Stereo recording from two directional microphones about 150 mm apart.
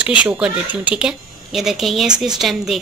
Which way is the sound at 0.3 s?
10° right (ahead or behind).